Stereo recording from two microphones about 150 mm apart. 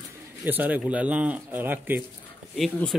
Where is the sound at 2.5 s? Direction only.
Centre (ahead or behind).